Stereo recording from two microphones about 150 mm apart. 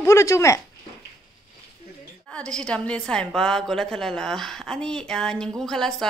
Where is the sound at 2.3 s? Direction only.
5° left (ahead or behind).